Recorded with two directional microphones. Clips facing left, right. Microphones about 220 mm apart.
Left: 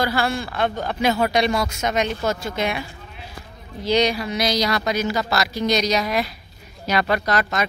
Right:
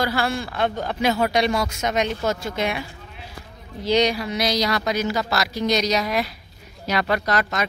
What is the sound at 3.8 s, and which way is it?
Speech, 20° right (ahead or behind).